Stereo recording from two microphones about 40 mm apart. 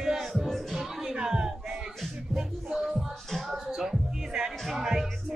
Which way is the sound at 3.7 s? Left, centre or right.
Centre.